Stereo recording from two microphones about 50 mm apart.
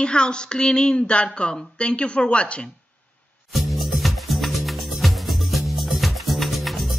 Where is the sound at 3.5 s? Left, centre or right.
Centre.